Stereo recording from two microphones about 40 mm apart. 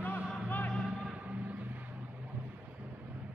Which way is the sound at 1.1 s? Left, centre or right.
Right.